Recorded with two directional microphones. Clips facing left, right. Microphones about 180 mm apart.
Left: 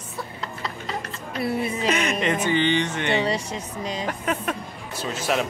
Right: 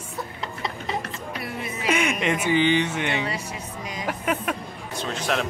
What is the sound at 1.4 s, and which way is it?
Speech, 30° left (ahead or behind).